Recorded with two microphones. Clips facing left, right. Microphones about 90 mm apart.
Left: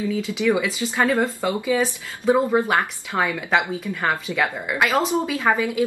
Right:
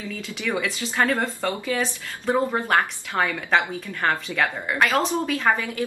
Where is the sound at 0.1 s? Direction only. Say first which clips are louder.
Left 6 dB; 10° left (ahead or behind).